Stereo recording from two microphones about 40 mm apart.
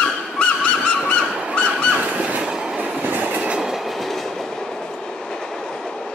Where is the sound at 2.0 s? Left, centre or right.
Right.